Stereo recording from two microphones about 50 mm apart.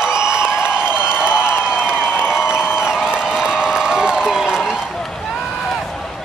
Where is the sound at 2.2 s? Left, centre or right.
Centre.